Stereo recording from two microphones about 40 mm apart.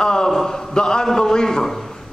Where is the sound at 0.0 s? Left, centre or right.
Centre.